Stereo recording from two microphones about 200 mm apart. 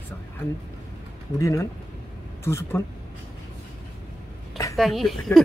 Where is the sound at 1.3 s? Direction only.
15° left (ahead or behind).